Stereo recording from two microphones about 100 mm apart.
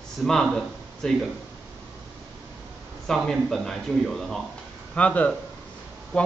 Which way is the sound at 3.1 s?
Centre (ahead or behind).